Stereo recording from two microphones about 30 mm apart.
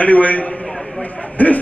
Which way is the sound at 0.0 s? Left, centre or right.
Left.